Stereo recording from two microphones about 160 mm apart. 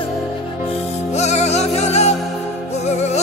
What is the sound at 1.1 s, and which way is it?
Music, 45° left (ahead or behind).